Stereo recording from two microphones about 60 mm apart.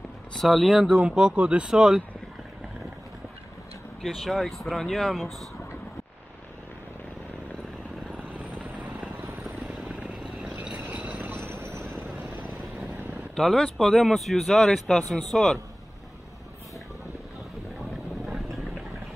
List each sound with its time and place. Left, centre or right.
0.4 s speech: centre
1.0 s speech: centre
4.0 s speech: centre
9.9 s vehicle: centre
10.9 s a sound: right
11.3 s train: right
13.4 s speech: centre
18.2 s vehicle: centre